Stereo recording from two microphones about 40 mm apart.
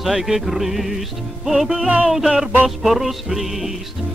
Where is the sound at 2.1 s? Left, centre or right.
Centre.